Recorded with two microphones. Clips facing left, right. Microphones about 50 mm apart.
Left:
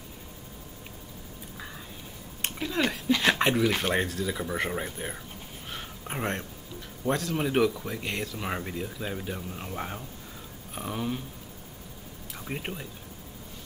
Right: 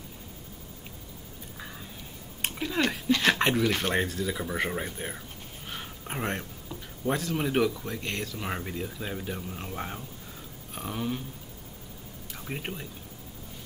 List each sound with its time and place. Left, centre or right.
2.4 s speech: centre
5.7 s a sound: centre
7.1 s speech: centre
12.4 s speech: centre